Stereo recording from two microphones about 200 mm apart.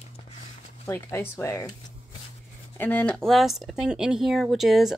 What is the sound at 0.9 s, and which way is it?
Speech, 10° left (ahead or behind).